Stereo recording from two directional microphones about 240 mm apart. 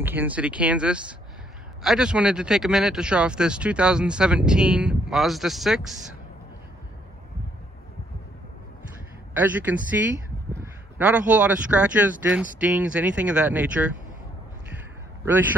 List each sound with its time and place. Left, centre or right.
0.0 s speech: centre
9.3 s a man's voice: centre